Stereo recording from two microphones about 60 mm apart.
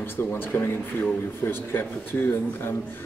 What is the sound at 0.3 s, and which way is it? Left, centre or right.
Speech, left.